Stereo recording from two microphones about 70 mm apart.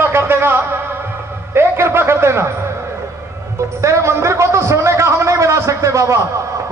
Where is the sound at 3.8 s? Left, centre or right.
Right.